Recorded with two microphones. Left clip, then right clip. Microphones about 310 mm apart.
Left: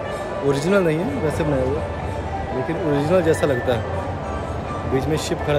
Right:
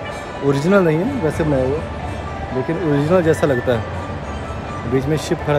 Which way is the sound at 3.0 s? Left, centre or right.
Centre.